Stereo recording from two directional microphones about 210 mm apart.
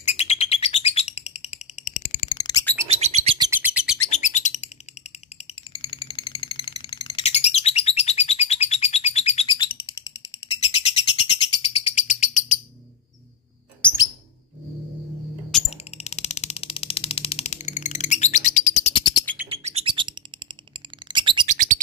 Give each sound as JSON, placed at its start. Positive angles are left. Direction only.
{"t": 0.0, "sound": "bird", "side_deg": 30}
{"t": 2.3, "sound": "bird", "side_deg": 20}
{"t": 2.9, "sound": "bird", "side_deg": -30}
{"t": 3.3, "sound": "bird", "side_deg": -10}
{"t": 4.1, "sound": "bird", "side_deg": 35}
{"t": 5.8, "sound": "bird", "side_deg": 25}
{"t": 16.0, "sound": "a sound", "side_deg": 30}
{"t": 19.5, "sound": "bird", "side_deg": -30}
{"t": 21.5, "sound": "bird", "side_deg": -40}